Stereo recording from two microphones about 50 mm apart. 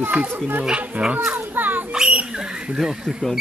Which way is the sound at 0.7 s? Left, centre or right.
Right.